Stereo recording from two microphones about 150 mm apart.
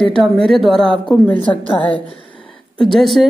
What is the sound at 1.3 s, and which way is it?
Speech, 35° left (ahead or behind).